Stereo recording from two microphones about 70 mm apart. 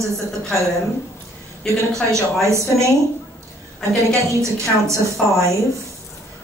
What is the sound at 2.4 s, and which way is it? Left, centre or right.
Speech, right.